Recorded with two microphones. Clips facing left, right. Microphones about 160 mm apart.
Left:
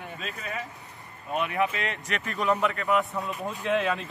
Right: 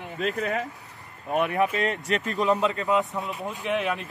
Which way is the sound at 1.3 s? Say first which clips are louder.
Right 3 dB; 45° right (ahead or behind).